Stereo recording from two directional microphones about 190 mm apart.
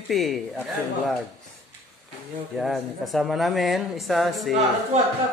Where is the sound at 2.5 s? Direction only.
Centre (ahead or behind).